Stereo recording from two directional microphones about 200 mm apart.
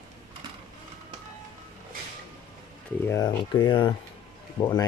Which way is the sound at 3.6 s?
25° left (ahead or behind).